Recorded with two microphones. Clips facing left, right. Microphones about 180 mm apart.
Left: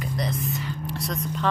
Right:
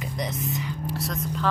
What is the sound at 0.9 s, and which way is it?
Speech, 5° right (ahead or behind).